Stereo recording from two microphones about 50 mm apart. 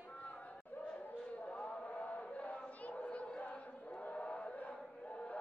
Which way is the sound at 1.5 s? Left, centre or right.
Left.